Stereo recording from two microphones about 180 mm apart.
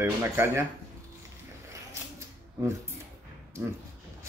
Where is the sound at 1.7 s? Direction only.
15° right (ahead or behind).